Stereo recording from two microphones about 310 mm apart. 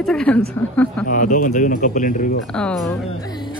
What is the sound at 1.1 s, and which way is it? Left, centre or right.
A man's voice, left.